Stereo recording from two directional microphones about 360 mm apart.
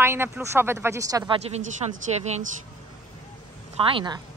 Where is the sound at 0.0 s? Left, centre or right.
Centre.